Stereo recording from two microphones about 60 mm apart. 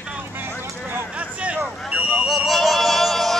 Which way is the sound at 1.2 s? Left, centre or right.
Right.